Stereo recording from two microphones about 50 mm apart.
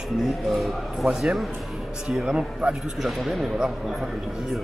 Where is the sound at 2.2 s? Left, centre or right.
Centre.